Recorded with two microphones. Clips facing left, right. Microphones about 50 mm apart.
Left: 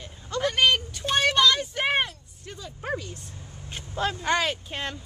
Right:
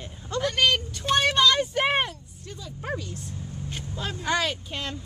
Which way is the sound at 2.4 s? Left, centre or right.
Left.